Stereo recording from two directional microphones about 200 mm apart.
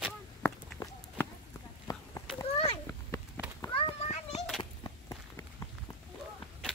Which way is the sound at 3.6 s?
25° left (ahead or behind).